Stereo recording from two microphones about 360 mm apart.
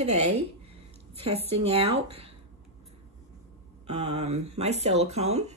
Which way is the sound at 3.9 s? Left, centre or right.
Centre.